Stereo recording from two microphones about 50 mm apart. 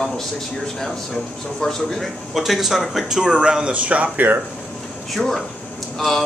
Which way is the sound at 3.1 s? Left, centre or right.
Centre.